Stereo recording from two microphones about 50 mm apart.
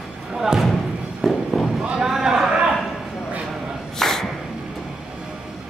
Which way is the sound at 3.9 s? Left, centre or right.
Centre.